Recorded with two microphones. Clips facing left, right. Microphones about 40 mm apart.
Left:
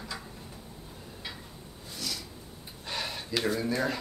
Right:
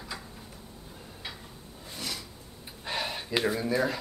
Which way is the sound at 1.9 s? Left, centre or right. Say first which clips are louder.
Even; right.